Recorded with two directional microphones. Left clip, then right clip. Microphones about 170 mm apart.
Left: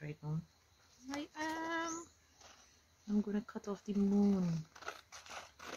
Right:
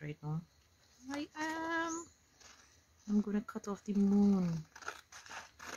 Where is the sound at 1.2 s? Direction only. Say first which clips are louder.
Right 2 dB; 30° right (ahead or behind).